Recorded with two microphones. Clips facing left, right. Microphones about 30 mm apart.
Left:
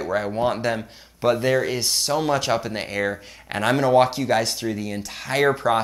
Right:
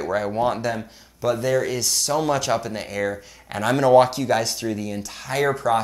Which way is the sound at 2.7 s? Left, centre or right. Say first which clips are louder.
Left 1 dB; left.